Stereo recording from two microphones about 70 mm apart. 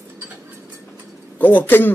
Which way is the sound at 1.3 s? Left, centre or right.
Left.